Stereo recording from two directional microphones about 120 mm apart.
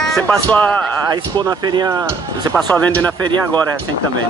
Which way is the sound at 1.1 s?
35° right (ahead or behind).